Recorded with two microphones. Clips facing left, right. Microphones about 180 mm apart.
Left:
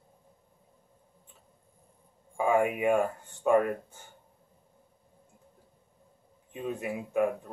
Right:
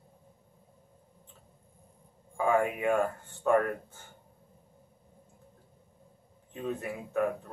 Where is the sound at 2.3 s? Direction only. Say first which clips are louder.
Left 1 dB; 15° left (ahead or behind).